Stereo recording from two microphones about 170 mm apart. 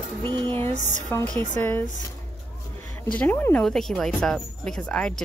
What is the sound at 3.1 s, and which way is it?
A woman's voice, 10° left (ahead or behind).